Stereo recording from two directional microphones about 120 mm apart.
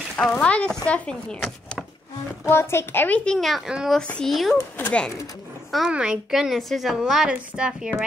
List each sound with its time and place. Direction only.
0.2 s speech: 10° left (ahead or behind)
2.4 s speech: 20° left (ahead or behind); by 4.0 s 5° right (ahead or behind)
4.0 s a woman's voice: 5° left (ahead or behind)
4.6 s speech: 15° left (ahead or behind)
5.7 s a woman's voice: 5° right (ahead or behind)